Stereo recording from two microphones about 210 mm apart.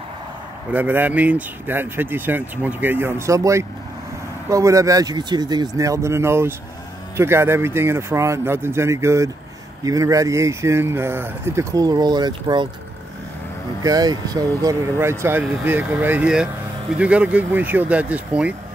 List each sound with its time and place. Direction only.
0.7 s speech: 10° right (ahead or behind)
13.8 s speech: 20° right (ahead or behind)